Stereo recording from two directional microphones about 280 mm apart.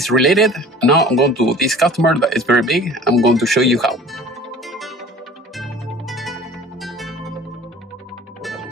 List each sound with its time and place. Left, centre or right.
0.0 s speech: centre
4.6 s music: centre
8.4 s music: centre